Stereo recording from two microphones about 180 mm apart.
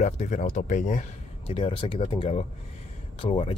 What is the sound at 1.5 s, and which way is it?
Speech, 30° left (ahead or behind).